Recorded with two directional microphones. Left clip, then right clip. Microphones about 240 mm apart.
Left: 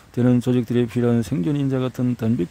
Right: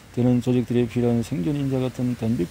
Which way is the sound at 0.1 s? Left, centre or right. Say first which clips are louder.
Left 2 dB; left.